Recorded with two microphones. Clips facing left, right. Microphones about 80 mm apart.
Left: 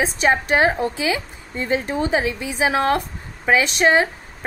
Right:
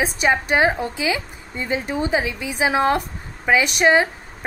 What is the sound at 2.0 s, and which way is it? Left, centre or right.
Speech, centre.